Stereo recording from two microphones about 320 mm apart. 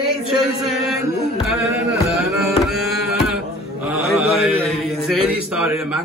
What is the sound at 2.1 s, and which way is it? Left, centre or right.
Music, centre.